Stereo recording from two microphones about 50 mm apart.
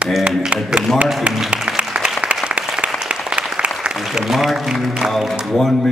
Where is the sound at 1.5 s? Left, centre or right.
Centre.